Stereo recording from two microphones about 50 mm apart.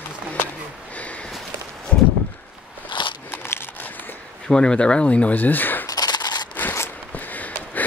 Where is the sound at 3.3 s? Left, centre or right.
Left.